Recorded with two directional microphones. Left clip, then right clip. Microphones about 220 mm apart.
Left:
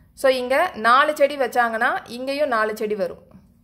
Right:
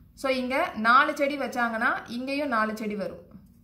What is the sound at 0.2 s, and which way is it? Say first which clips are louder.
A woman's voice: left 8 dB; 50° left (ahead or behind).